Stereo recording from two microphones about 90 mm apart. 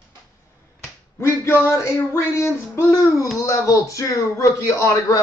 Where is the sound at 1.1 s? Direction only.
30° left (ahead or behind).